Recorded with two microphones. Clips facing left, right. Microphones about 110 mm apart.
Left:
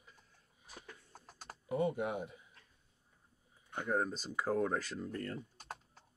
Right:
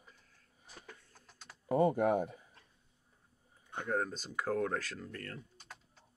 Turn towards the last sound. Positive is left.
turn(degrees=25)  # may be behind; listen again after turning